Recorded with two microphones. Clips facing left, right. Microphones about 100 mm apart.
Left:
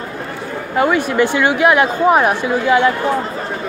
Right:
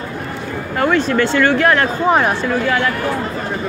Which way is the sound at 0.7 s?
10° left (ahead or behind).